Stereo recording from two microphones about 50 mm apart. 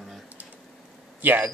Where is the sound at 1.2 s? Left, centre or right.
Right.